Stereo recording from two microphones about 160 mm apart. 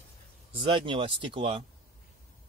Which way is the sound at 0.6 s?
30° right (ahead or behind).